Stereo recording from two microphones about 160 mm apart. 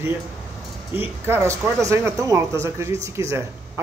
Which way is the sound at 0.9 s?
15° right (ahead or behind).